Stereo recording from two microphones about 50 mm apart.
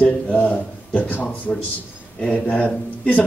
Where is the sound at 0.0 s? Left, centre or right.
Left.